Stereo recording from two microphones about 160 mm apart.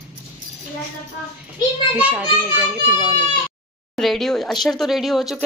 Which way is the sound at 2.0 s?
10° right (ahead or behind).